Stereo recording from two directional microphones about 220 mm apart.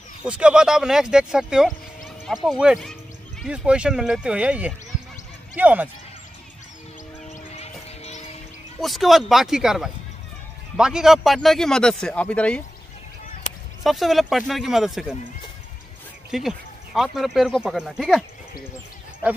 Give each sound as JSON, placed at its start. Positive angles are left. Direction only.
{"t": 0.2, "sound": "speech", "side_deg": -5}
{"t": 8.0, "sound": "music", "side_deg": 30}
{"t": 8.8, "sound": "speech", "side_deg": 0}
{"t": 13.8, "sound": "speech", "side_deg": 0}
{"t": 16.3, "sound": "speech", "side_deg": 0}